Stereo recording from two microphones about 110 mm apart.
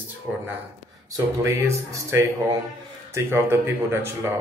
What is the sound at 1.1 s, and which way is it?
Speech, 20° right (ahead or behind).